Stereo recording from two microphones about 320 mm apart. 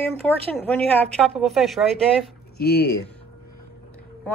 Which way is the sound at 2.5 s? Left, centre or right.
Left.